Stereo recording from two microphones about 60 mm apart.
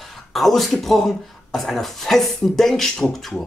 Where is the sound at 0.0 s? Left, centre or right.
Centre.